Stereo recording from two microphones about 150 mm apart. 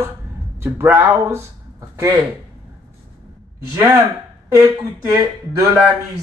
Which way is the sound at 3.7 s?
20° right (ahead or behind).